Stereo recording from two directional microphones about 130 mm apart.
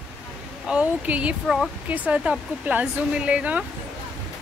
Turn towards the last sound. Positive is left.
turn(degrees=-10)  # may be behind; listen again after turning